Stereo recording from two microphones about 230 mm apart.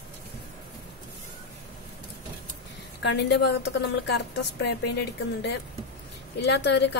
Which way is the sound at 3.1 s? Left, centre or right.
Left.